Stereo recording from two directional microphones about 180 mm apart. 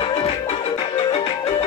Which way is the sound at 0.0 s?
35° left (ahead or behind).